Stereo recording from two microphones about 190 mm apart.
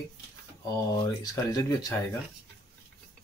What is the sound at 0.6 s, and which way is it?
Speech, 20° left (ahead or behind).